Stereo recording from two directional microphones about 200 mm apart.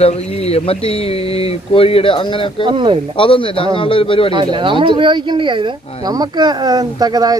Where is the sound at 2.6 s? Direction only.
25° right (ahead or behind).